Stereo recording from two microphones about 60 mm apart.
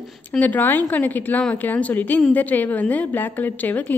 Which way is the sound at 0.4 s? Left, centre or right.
Left.